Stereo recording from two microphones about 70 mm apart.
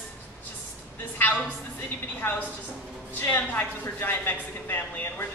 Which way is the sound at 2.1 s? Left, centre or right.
Left.